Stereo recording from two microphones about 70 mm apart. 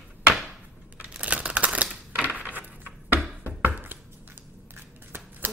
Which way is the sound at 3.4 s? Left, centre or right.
Right.